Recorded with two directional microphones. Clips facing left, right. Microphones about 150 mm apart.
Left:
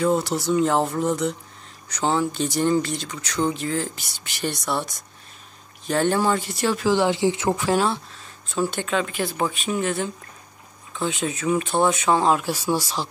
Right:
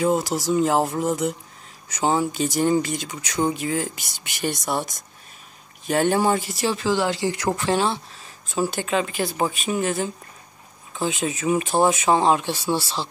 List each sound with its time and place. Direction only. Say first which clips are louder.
0.0 s speech: even; 10° right (ahead or behind)
5.9 s speech: right 1 dB; 15° right (ahead or behind)
6.8 s speech: left 4 dB; 15° left (ahead or behind)
7.6 s speech: even; centre (ahead or behind)